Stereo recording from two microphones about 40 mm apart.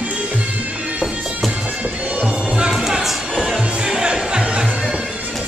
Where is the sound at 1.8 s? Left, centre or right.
Right.